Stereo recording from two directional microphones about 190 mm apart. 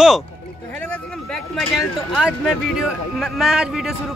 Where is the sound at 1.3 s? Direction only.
Centre (ahead or behind).